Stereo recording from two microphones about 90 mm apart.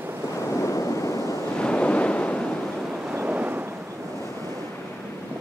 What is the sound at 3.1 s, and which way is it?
Waves, 15° right (ahead or behind).